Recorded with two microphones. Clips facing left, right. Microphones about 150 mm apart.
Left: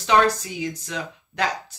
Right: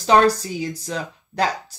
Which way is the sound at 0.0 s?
35° right (ahead or behind).